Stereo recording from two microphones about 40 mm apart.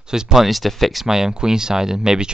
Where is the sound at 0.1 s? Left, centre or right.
Centre.